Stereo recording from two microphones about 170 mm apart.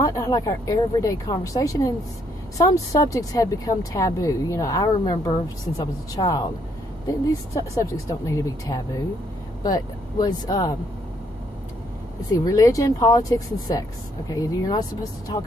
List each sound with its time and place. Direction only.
0.0 s speech: 20° left (ahead or behind)
7.7 s speech: 20° left (ahead or behind)
12.3 s speech: 20° left (ahead or behind)